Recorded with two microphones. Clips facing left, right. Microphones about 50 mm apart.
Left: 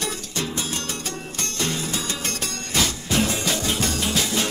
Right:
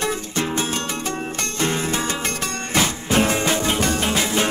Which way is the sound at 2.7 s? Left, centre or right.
Right.